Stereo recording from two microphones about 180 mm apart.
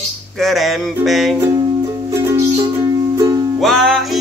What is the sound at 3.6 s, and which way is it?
Music, centre (ahead or behind).